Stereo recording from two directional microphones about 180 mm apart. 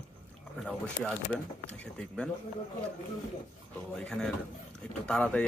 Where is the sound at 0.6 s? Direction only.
5° left (ahead or behind).